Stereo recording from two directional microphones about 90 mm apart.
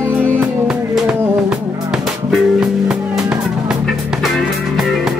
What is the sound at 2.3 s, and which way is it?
Music, 5° right (ahead or behind).